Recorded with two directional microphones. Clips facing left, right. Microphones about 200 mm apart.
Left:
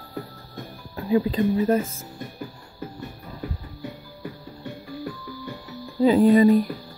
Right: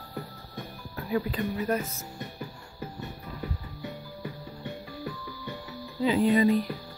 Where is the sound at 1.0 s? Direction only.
25° left (ahead or behind).